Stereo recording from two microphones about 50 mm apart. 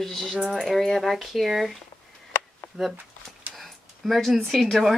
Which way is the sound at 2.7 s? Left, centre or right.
Centre.